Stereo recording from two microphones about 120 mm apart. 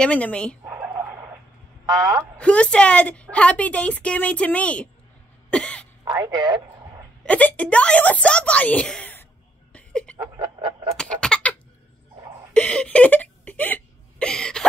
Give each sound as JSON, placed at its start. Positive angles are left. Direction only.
{"t": 0.0, "sound": "a woman's voice", "side_deg": 10}
{"t": 0.7, "sound": "dog", "side_deg": -15}
{"t": 2.0, "sound": "speech", "side_deg": -25}
{"t": 2.3, "sound": "a woman's voice", "side_deg": 10}
{"t": 5.5, "sound": "cough", "side_deg": 10}
{"t": 6.2, "sound": "speech", "side_deg": -40}
{"t": 7.2, "sound": "a woman's voice", "side_deg": 10}
{"t": 9.7, "sound": "a sound", "side_deg": 10}
{"t": 10.3, "sound": "a sound", "side_deg": -40}
{"t": 11.0, "sound": "a sound", "side_deg": 5}